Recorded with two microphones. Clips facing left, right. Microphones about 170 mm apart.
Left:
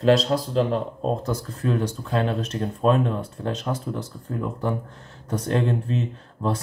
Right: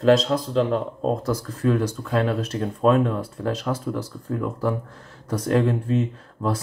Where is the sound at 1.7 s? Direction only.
30° left (ahead or behind).